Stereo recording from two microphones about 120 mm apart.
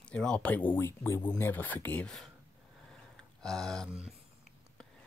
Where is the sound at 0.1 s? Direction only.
10° left (ahead or behind).